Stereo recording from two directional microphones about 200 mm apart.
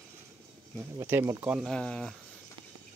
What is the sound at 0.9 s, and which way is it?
Speech, 15° right (ahead or behind).